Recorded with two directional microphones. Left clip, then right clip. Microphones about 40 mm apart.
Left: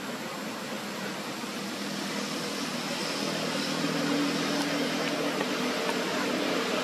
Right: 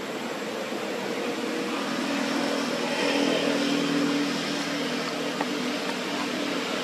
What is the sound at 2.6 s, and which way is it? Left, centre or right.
Vehicle, centre.